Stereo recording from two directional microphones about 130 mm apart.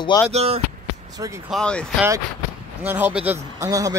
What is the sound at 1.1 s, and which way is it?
Speech, 25° right (ahead or behind).